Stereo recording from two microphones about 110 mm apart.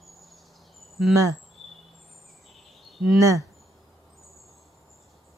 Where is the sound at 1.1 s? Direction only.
30° right (ahead or behind).